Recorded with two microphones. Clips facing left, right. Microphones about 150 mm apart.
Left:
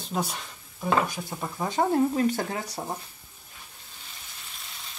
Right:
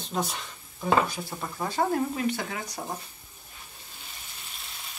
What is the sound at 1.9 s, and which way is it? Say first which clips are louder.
Speech: left 5 dB; 25° left (ahead or behind).